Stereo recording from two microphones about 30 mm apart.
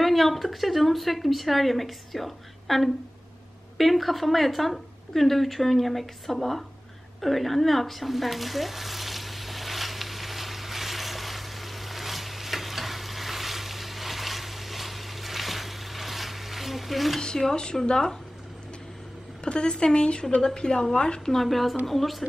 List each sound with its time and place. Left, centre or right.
0.0 s a woman's voice: centre
7.2 s a sound: centre
17.5 s speech: left
19.4 s a woman's voice: left
21.3 s a woman's voice: centre